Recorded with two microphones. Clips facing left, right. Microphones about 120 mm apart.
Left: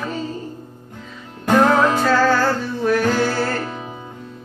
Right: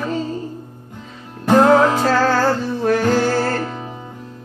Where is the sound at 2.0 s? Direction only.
35° right (ahead or behind).